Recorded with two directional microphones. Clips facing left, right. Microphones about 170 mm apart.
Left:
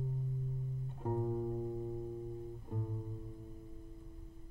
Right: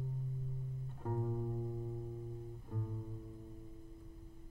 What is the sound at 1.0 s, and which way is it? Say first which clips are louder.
Music: left 4 dB; 20° left (ahead or behind).